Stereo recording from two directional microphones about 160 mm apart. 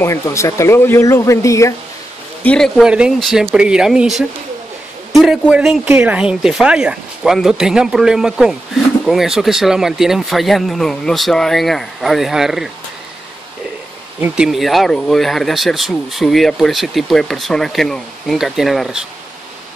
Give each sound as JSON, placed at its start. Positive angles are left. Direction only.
{"t": 0.0, "sound": "speech", "side_deg": 20}
{"t": 2.4, "sound": "speech", "side_deg": 5}
{"t": 14.2, "sound": "speech", "side_deg": -5}